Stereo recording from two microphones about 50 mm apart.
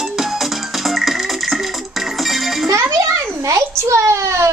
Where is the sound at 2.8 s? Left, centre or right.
Right.